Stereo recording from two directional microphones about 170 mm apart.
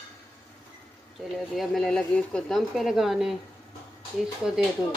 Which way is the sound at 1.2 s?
Centre (ahead or behind).